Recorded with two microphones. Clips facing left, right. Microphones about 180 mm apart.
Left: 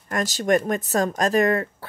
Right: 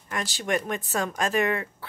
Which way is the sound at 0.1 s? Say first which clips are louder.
Left 7 dB; 40° left (ahead or behind).